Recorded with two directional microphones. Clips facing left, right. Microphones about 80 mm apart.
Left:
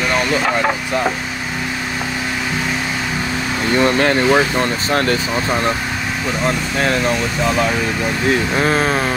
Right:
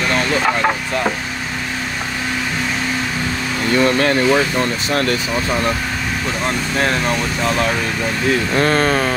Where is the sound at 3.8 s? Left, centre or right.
Left.